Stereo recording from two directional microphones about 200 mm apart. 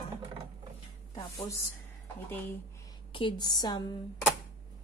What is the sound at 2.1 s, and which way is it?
Speech, 10° left (ahead or behind).